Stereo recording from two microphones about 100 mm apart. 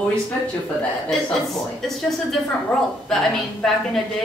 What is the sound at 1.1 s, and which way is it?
A woman's voice, 5° left (ahead or behind).